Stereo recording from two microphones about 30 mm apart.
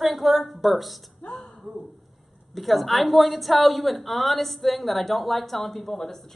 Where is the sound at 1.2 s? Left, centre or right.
Left.